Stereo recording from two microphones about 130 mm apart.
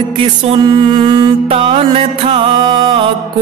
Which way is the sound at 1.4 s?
45° right (ahead or behind).